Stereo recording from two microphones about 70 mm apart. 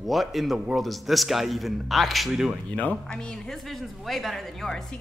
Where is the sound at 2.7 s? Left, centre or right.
Left.